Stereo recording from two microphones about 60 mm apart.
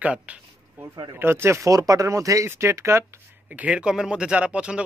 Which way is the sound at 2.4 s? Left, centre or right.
Right.